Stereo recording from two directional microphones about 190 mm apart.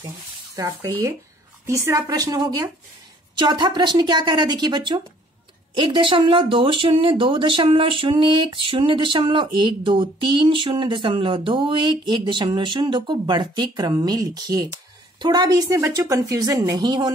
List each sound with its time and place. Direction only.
0.6 s speech: 20° right (ahead or behind)